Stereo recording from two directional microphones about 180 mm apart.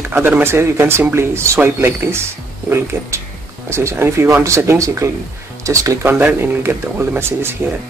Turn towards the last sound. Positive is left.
turn(degrees=-15)  # may be behind; listen again after turning